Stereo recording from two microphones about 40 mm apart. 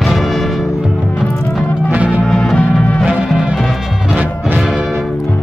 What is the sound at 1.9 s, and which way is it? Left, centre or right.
Music, right.